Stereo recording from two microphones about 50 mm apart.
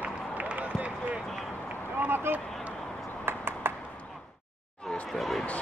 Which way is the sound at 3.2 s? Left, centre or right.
Right.